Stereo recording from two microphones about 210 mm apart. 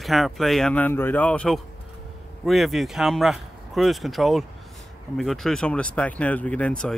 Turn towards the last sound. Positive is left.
turn(degrees=5)  # may be behind; listen again after turning